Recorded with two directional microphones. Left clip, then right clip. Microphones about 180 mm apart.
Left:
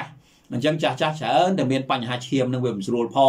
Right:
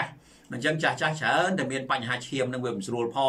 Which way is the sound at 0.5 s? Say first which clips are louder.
Left 4 dB; 20° left (ahead or behind).